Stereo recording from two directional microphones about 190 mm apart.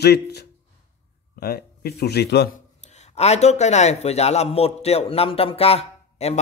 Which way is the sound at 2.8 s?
35° left (ahead or behind).